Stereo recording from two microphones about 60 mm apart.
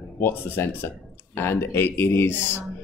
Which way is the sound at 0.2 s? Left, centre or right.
Left.